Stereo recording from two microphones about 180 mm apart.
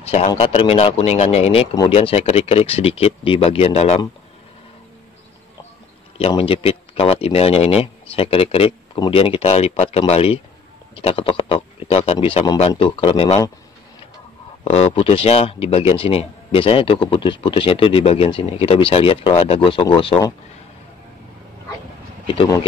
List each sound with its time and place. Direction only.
0.0 s a sound: 35° left (ahead or behind)
0.4 s speech: 30° left (ahead or behind)
6.1 s speech: 30° left (ahead or behind)
14.6 s speech: 35° left (ahead or behind)
22.2 s speech: 25° left (ahead or behind)